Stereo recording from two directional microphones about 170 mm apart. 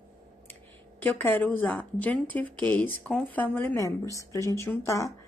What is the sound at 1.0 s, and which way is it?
Speech, 10° left (ahead or behind).